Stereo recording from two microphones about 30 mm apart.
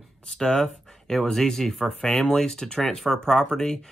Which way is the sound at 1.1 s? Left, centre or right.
Centre.